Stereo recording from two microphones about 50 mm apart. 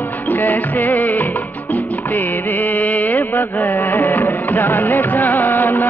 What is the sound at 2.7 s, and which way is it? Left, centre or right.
Music, left.